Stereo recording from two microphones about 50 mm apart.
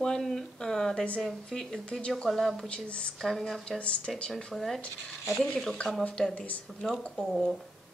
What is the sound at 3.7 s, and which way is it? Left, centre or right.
Speech, left.